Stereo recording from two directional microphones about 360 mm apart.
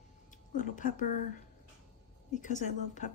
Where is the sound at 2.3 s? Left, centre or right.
Left.